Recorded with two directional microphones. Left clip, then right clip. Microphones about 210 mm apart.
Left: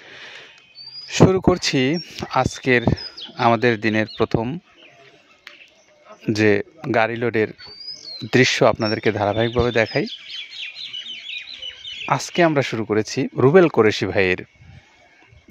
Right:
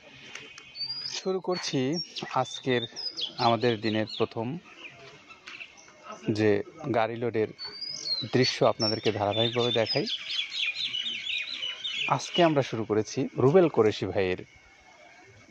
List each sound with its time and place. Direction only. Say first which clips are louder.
1.1 s speech: left 16 dB; 55° left (ahead or behind)
6.2 s speech: left 8 dB; 50° left (ahead or behind)
10.6 s bird: right 2 dB; 15° left (ahead or behind)
12.1 s speech: left 7 dB; 50° left (ahead or behind)